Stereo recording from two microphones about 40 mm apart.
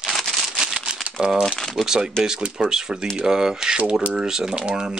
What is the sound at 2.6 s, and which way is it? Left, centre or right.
Speech, centre.